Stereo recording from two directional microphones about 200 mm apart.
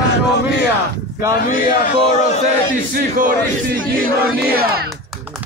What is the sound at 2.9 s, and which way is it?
Speech, 45° right (ahead or behind).